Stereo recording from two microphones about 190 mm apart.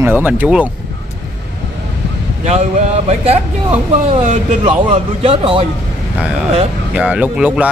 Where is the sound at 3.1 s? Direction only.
30° right (ahead or behind).